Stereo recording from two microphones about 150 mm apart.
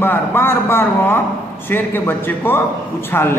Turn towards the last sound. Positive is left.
turn(degrees=15)  # may be behind; listen again after turning